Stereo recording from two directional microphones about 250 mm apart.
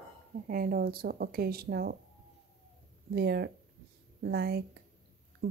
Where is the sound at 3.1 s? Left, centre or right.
Right.